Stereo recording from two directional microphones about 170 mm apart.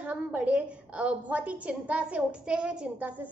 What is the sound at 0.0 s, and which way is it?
A woman's voice, 10° right (ahead or behind).